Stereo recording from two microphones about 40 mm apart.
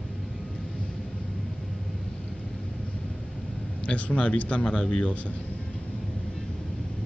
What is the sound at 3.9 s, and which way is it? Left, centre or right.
A man's voice, left.